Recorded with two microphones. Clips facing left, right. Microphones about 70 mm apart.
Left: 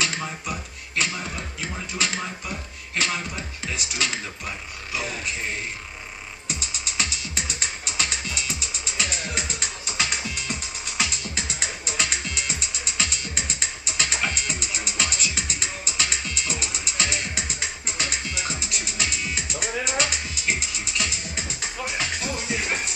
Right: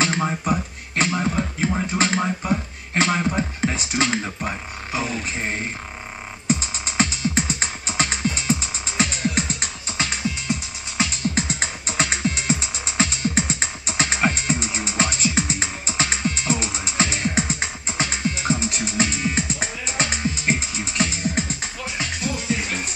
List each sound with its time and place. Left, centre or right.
0.0 s beatboxing: right
5.2 s music: right
22.2 s music: centre